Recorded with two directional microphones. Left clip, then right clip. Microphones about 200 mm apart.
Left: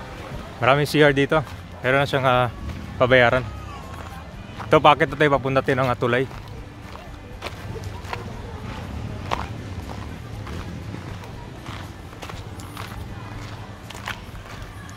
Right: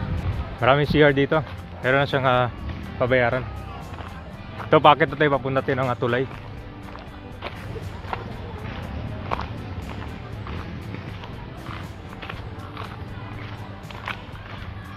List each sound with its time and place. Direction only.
0.6 s speech: centre (ahead or behind)
3.0 s speech: 25° left (ahead or behind)
4.6 s speech: 5° left (ahead or behind)